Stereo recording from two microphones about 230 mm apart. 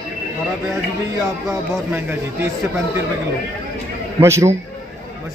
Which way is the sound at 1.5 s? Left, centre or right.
Centre.